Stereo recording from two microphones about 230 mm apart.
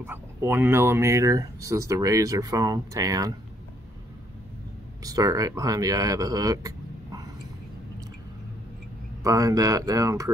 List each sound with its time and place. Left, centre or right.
0.0 s speech: centre
5.0 s speech: centre
9.2 s speech: centre